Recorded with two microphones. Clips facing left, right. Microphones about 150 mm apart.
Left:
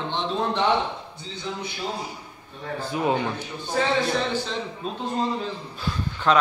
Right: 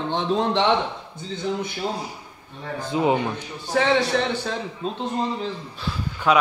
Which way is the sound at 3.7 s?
75° right (ahead or behind).